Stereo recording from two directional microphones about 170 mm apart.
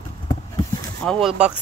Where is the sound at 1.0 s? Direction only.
Centre (ahead or behind).